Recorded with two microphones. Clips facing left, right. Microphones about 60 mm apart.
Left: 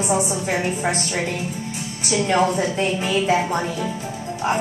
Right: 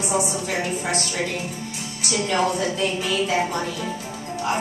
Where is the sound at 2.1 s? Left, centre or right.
Left.